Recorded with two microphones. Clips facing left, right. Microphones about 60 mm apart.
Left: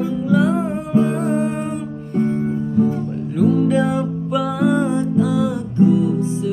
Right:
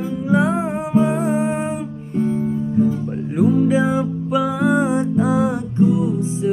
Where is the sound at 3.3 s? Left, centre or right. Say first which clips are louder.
Even; right.